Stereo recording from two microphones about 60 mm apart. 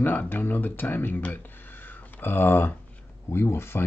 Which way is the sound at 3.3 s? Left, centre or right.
Left.